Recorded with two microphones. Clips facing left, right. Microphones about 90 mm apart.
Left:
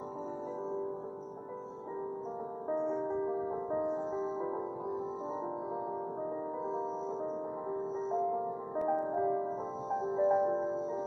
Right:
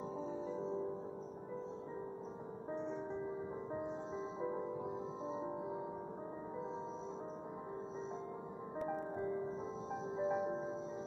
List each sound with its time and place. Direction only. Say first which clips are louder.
3.7 s music: left 10 dB; 20° left (ahead or behind)
10.1 s music: left 9 dB; 20° left (ahead or behind)